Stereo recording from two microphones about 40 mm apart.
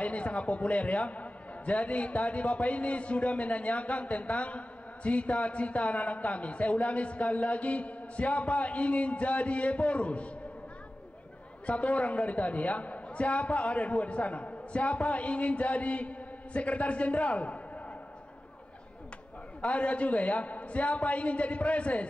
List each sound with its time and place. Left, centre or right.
0.0 s a man's voice: left
11.6 s a man's voice: left
19.6 s a man's voice: left